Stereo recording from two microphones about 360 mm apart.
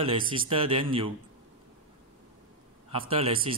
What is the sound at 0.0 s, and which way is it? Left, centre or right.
Speech, centre.